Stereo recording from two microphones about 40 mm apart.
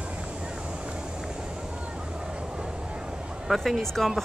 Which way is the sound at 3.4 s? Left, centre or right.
Centre.